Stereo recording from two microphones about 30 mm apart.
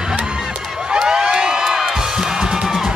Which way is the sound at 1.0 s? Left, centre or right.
Right.